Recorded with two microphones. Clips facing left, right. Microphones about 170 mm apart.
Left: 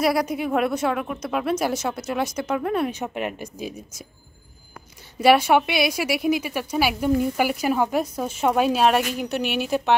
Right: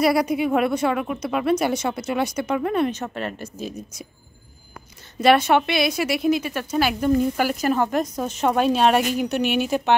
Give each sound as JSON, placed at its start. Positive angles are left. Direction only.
{"t": 0.0, "sound": "a woman's voice", "side_deg": 0}
{"t": 3.0, "sound": "a woman's voice", "side_deg": 15}
{"t": 5.2, "sound": "a woman's voice", "side_deg": 10}